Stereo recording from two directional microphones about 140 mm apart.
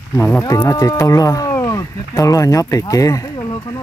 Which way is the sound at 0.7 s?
25° left (ahead or behind).